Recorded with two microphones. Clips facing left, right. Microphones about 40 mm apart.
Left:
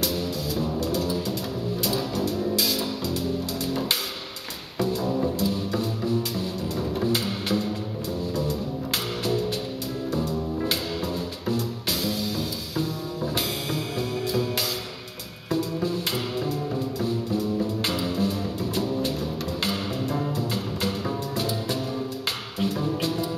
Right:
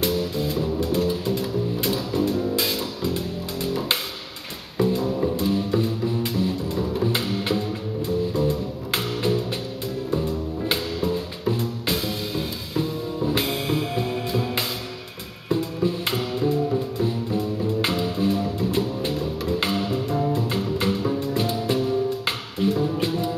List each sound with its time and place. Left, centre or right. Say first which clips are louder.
0.0 s music: right 4 dB; right
4.7 s music: right 3 dB; right
15.5 s music: right 2 dB; right
21.3 s music: right 4 dB; right
22.9 s music: right 3 dB; right